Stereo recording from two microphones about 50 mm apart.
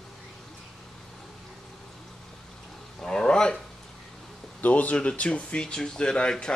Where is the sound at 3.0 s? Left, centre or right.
Centre.